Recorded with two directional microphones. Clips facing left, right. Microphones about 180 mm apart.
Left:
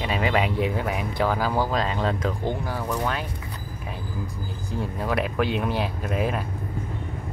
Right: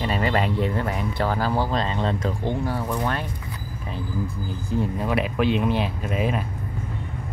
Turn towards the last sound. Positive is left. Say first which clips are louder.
# right 1 dB
turn(degrees=0)  # may be behind; listen again after turning